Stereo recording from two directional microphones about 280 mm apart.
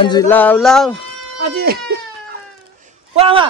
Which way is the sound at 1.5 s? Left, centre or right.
Right.